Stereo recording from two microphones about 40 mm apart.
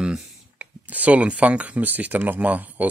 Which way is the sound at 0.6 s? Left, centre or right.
Right.